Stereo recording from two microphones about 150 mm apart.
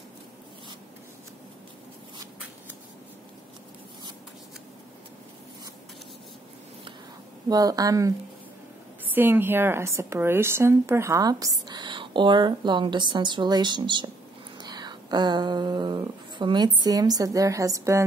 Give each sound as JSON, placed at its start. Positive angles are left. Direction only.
{"t": 7.4, "sound": "a woman's voice", "side_deg": -25}
{"t": 9.1, "sound": "a woman's voice", "side_deg": -15}